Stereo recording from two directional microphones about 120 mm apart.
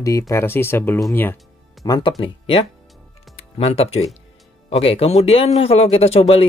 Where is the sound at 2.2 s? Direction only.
50° left (ahead or behind).